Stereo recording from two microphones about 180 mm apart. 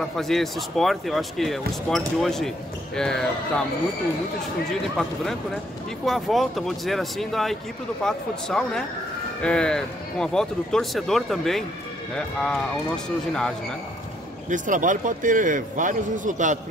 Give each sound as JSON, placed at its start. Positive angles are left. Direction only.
{"t": 0.2, "sound": "speech", "side_deg": 0}
{"t": 4.9, "sound": "speech", "side_deg": 0}
{"t": 14.5, "sound": "a man's voice", "side_deg": -45}